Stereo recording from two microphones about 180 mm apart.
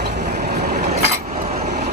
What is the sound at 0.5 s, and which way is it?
Vehicle, 40° right (ahead or behind).